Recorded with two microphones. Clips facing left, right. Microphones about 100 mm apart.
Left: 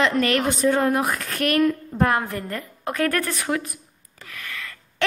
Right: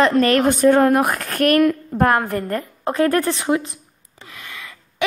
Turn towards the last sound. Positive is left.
turn(degrees=-20)  # may be behind; listen again after turning